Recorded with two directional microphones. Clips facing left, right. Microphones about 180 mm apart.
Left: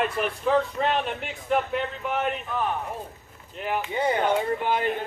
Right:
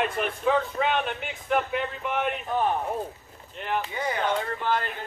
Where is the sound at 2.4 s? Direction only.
35° right (ahead or behind).